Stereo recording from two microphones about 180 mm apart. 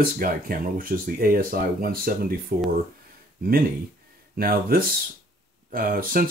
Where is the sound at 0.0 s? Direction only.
55° right (ahead or behind).